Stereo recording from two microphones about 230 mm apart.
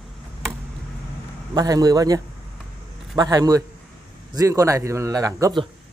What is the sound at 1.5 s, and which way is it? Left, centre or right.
Speech, centre.